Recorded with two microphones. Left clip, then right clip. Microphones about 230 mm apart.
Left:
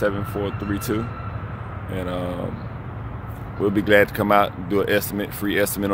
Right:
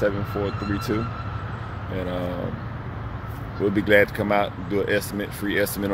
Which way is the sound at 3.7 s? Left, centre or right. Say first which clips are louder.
Left 2 dB; centre.